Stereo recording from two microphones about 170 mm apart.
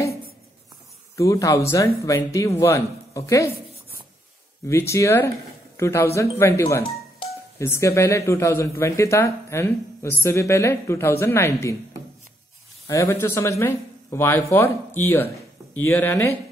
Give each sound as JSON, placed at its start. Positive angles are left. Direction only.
{"t": 1.1, "sound": "speech", "side_deg": 20}
{"t": 4.6, "sound": "speech", "side_deg": 15}
{"t": 12.8, "sound": "speech", "side_deg": 15}